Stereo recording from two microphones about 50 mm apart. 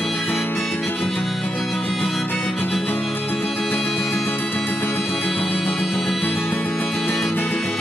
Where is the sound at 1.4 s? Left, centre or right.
Left.